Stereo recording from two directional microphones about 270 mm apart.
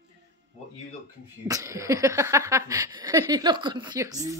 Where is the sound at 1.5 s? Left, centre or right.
Centre.